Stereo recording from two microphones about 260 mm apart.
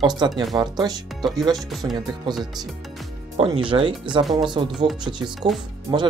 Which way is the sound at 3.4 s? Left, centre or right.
Centre.